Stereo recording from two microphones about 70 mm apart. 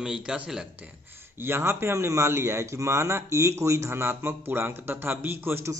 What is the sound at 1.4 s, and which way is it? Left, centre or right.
A man's voice, right.